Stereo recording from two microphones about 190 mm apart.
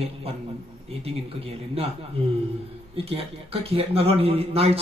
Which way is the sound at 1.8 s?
30° right (ahead or behind).